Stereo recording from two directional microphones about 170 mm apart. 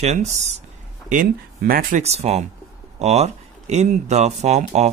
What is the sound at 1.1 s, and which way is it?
Speech, 55° right (ahead or behind).